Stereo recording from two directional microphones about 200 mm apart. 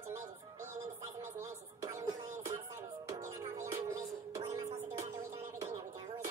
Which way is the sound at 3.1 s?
15° right (ahead or behind).